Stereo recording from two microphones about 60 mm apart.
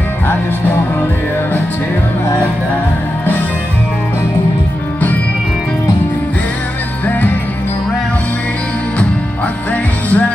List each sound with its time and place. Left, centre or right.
7.1 s music: left
10.0 s music: left